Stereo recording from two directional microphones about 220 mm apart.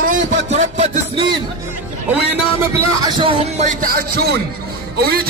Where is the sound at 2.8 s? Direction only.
20° right (ahead or behind); by 5.2 s 45° right (ahead or behind).